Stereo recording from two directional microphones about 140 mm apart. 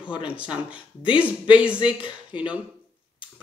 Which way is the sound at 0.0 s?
10° right (ahead or behind).